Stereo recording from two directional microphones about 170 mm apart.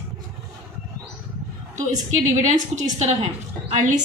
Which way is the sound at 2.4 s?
45° right (ahead or behind).